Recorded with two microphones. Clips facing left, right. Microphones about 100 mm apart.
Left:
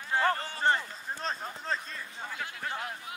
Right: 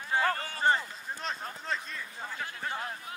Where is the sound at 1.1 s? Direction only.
35° left (ahead or behind).